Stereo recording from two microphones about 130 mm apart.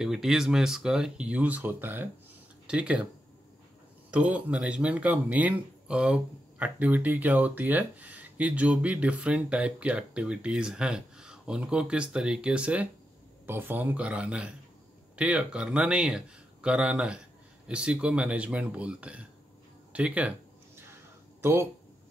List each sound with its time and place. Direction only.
0.0 s speech: 5° right (ahead or behind)
4.1 s speech: 10° right (ahead or behind)
19.9 s a sound: 10° right (ahead or behind)